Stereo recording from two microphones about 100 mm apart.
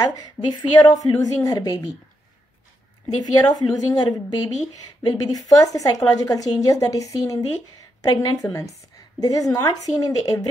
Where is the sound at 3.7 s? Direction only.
40° left (ahead or behind).